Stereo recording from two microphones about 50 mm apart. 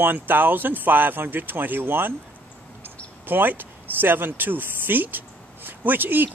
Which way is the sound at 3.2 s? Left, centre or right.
Right.